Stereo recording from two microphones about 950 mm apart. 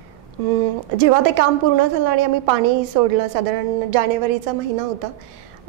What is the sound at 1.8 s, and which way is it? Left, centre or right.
A woman's voice, right.